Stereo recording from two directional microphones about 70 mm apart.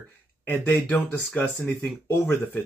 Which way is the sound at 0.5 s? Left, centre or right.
Left.